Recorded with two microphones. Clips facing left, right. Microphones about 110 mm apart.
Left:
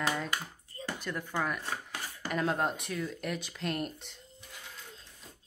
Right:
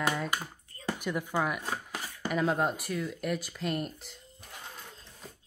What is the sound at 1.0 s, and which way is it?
Speech, 15° right (ahead or behind).